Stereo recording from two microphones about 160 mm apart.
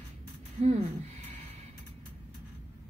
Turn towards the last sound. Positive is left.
turn(degrees=-40)  # may be behind; listen again after turning